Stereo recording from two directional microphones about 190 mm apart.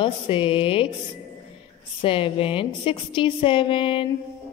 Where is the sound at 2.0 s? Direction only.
30° left (ahead or behind).